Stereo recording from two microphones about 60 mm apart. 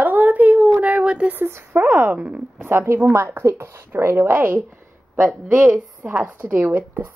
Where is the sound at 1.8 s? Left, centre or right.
Right.